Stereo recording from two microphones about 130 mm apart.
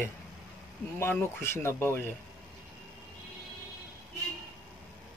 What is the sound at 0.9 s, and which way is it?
Speech, 20° left (ahead or behind).